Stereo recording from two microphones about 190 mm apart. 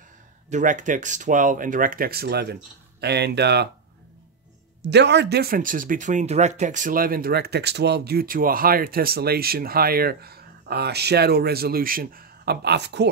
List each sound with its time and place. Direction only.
0.5 s speech: 40° right (ahead or behind); by 3.6 s 60° right (ahead or behind)
4.8 s speech: 65° right (ahead or behind)